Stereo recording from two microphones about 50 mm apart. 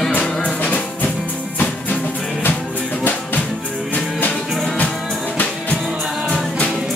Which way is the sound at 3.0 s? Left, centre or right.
Left.